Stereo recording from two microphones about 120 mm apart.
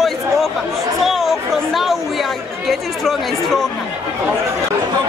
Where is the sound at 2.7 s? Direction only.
Centre (ahead or behind).